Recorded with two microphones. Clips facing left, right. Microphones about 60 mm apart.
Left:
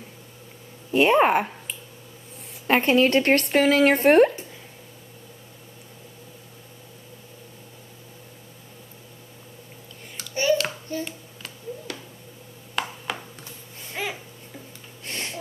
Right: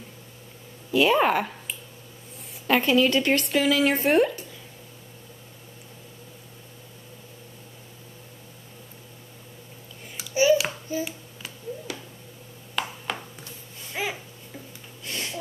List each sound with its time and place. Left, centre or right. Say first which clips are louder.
0.9 s speech: left 2 dB; left
2.6 s speech: left 2 dB; left
10.1 s babbling: right 2 dB; centre
12.7 s a sound: left 1 dB; centre
14.0 s babbling: right 1 dB; centre
15.0 s a sound: even; left